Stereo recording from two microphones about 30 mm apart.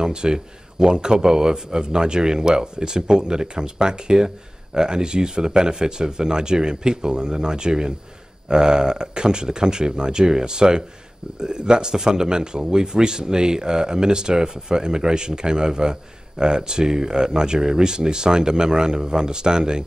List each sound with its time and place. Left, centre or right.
0.0 s speech: right